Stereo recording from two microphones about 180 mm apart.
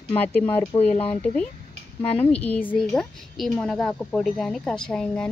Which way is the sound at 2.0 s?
35° left (ahead or behind).